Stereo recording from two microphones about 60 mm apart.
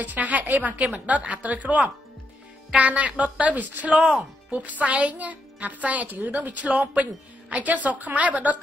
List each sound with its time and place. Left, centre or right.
0.0 s a woman's voice: right